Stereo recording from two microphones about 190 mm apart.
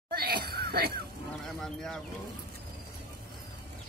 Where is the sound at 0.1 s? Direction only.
55° right (ahead or behind).